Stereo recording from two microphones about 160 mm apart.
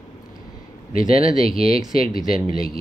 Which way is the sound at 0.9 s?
35° right (ahead or behind).